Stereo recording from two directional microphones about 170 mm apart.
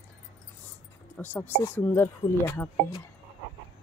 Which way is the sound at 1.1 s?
10° left (ahead or behind).